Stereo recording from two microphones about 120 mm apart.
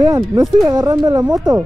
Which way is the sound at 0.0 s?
30° right (ahead or behind).